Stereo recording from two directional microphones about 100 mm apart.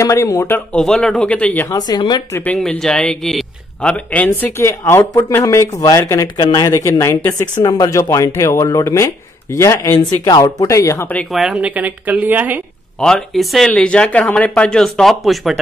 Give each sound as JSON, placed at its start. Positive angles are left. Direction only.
{"t": 0.0, "sound": "speech", "side_deg": 30}
{"t": 0.7, "sound": "speech", "side_deg": 10}
{"t": 1.7, "sound": "speech", "side_deg": 40}
{"t": 2.4, "sound": "speech", "side_deg": 15}
{"t": 3.9, "sound": "speech", "side_deg": 15}
{"t": 9.9, "sound": "speech", "side_deg": 45}
{"t": 10.6, "sound": "speech", "side_deg": 30}
{"t": 11.2, "sound": "speech", "side_deg": 0}
{"t": 11.5, "sound": "a woman's voice", "side_deg": -15}
{"t": 13.0, "sound": "speech", "side_deg": 5}